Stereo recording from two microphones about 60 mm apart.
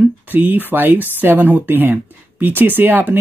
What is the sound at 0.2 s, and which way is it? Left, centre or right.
Speech, right.